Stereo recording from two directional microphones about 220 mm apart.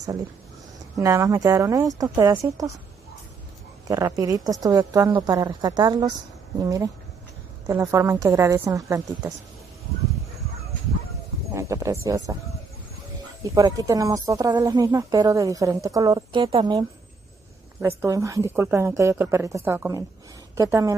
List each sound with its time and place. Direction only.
0.9 s a woman's voice: 15° right (ahead or behind)
3.8 s a woman's voice: 15° right (ahead or behind)
11.5 s a woman's voice: 15° right (ahead or behind)
13.4 s a woman's voice: 15° right (ahead or behind)